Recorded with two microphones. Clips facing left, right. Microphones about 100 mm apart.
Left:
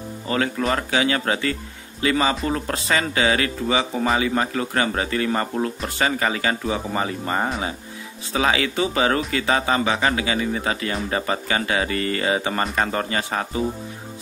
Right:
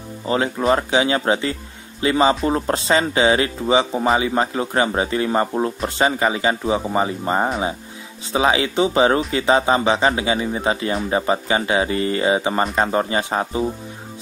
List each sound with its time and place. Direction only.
0.3 s speech: 20° right (ahead or behind)